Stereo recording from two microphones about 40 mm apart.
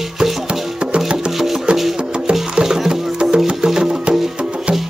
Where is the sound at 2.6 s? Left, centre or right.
Centre.